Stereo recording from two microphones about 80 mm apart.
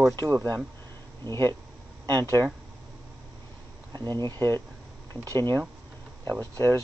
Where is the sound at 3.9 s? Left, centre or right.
Right.